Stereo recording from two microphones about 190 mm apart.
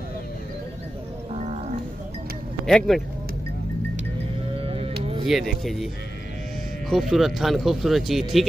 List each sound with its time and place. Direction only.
1.4 s music: 40° right (ahead or behind)
2.6 s speech: 5° left (ahead or behind)
4.6 s music: 30° right (ahead or behind)
5.2 s speech: centre (ahead or behind)
6.9 s speech: centre (ahead or behind)